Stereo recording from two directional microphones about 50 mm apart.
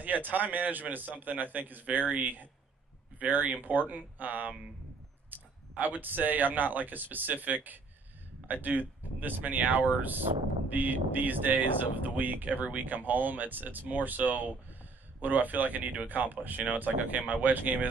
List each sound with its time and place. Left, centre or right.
0.0 s speech: right
5.3 s a sound: right
5.8 s speech: right